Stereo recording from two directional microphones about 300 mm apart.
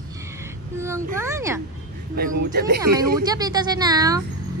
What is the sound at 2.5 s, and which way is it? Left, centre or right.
Speech, right.